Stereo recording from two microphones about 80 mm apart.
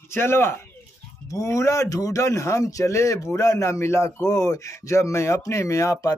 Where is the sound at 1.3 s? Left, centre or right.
Left.